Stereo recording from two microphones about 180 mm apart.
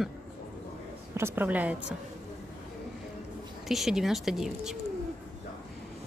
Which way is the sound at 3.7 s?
Centre (ahead or behind).